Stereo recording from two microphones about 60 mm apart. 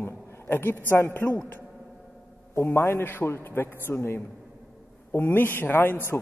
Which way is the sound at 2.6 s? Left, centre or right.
Left.